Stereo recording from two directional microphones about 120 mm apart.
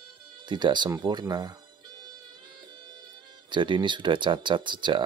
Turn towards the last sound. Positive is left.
turn(degrees=-40)  # may be behind; listen again after turning